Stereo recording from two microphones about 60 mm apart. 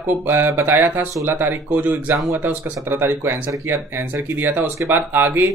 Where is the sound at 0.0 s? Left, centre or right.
Right.